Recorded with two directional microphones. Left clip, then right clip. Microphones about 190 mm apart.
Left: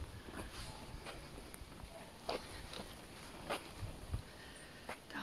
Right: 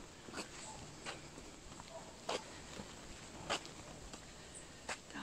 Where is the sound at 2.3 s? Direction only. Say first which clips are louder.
Right 1 dB; 10° right (ahead or behind).